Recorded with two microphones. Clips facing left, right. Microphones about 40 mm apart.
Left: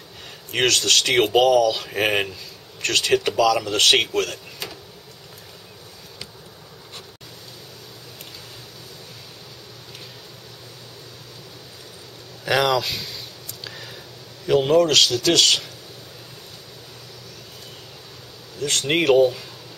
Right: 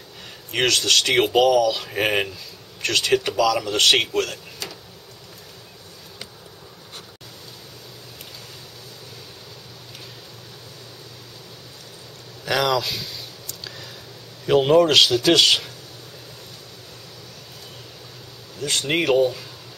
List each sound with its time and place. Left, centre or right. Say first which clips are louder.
0.5 s speech: even; centre
4.6 s vehicle: left 1 dB; centre
12.4 s a sound: left 1 dB; centre
14.4 s speech: right 1 dB; centre
18.6 s a sound: left 1 dB; centre
18.9 s speech: left 3 dB; centre